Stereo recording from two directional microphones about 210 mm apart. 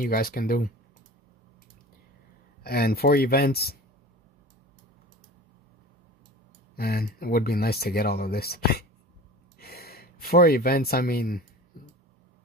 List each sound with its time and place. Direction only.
0.0 s speech: 45° left (ahead or behind)
2.6 s speech: 45° left (ahead or behind)
6.7 s speech: 45° left (ahead or behind)